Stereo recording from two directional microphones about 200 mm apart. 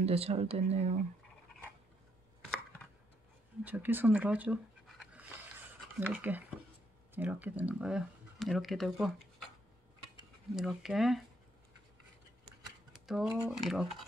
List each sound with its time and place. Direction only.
0.0 s speech: 30° right (ahead or behind)
3.6 s speech: 10° right (ahead or behind)
10.5 s speech: centre (ahead or behind)
13.0 s speech: centre (ahead or behind)